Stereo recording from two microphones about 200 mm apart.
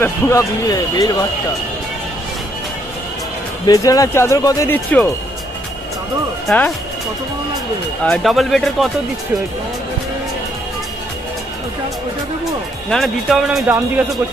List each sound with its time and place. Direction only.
0.0 s speech: 15° left (ahead or behind)
3.6 s speech: 15° left (ahead or behind)
8.0 s speech: 5° left (ahead or behind)
12.9 s speech: centre (ahead or behind)